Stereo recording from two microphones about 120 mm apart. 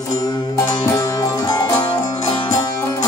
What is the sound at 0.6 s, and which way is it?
Music, 25° left (ahead or behind).